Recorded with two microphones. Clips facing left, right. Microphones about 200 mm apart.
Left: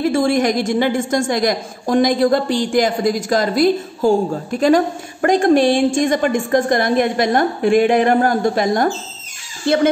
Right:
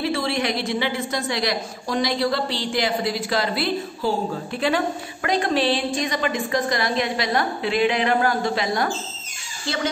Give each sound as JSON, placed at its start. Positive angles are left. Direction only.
{"t": 0.0, "sound": "a woman's voice", "side_deg": 45}